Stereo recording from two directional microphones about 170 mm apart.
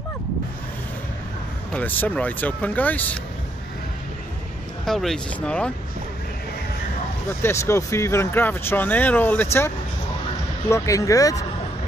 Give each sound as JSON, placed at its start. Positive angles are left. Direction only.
{"t": 1.7, "sound": "speech", "side_deg": 10}
{"t": 4.8, "sound": "speech", "side_deg": 0}
{"t": 7.4, "sound": "speech", "side_deg": 15}
{"t": 10.7, "sound": "speech", "side_deg": 20}